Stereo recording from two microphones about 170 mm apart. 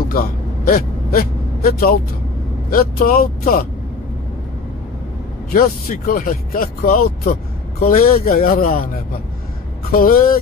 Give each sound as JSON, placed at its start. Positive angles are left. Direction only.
{"t": 0.1, "sound": "gasp", "side_deg": 55}
{"t": 2.7, "sound": "speech", "side_deg": 55}
{"t": 5.5, "sound": "speech", "side_deg": 55}
{"t": 9.8, "sound": "speech", "side_deg": 60}